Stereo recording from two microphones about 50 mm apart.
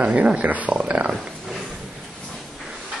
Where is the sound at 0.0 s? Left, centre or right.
Right.